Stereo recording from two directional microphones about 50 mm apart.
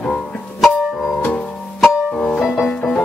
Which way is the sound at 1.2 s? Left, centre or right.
Left.